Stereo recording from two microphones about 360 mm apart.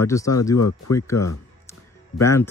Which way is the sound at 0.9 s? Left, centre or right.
Centre.